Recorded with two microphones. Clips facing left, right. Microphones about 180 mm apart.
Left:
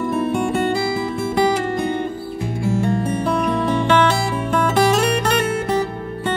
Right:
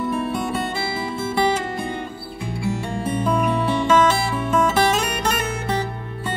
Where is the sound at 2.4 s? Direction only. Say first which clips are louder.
Left 4 dB; 45° left (ahead or behind).